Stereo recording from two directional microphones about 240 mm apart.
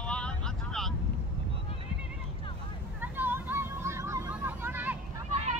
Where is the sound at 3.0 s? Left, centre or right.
Centre.